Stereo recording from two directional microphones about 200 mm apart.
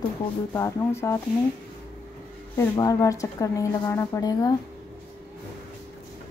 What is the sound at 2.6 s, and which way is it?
A woman's voice, 15° left (ahead or behind).